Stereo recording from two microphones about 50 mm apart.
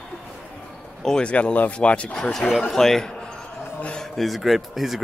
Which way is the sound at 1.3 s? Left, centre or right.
Left.